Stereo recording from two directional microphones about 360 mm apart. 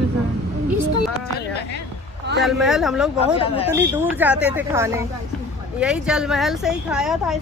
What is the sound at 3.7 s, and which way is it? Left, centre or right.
Speech, centre.